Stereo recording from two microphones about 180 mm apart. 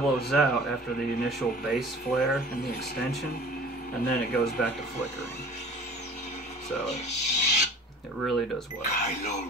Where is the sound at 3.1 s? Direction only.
55° left (ahead or behind).